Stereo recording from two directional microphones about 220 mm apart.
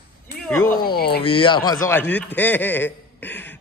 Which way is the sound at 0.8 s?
45° left (ahead or behind).